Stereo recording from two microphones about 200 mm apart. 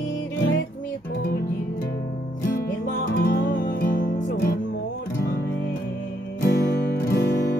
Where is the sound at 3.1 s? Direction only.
45° left (ahead or behind).